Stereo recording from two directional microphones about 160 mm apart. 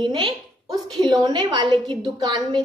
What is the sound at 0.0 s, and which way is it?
A woman's voice, 30° right (ahead or behind).